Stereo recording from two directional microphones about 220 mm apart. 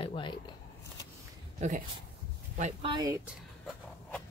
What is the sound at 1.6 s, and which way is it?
Speech, 30° right (ahead or behind).